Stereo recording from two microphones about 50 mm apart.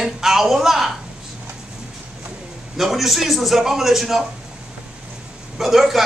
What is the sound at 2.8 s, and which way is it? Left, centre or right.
A man's voice, centre.